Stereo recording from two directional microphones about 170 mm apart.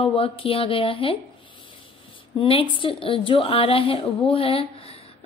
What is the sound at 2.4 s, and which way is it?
A woman's voice, 30° left (ahead or behind).